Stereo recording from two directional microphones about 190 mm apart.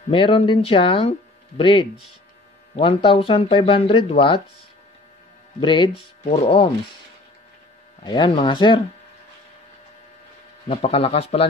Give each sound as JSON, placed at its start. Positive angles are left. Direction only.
{"t": 0.1, "sound": "speech", "side_deg": 30}
{"t": 5.6, "sound": "speech", "side_deg": 25}
{"t": 8.0, "sound": "speech", "side_deg": 25}
{"t": 10.7, "sound": "speech", "side_deg": 30}